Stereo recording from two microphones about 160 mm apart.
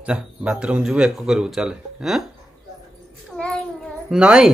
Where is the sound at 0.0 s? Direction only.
5° right (ahead or behind).